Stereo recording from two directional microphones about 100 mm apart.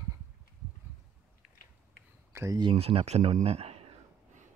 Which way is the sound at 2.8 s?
80° right.